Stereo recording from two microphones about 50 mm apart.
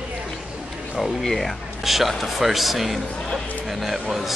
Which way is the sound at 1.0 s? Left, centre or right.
Centre.